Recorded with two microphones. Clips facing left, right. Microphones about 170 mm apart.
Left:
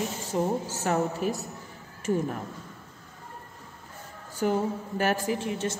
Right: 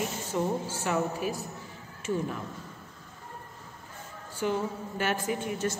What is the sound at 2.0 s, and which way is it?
Speech, 50° left (ahead or behind).